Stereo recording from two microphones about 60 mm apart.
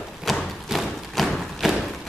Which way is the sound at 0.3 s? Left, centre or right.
Centre.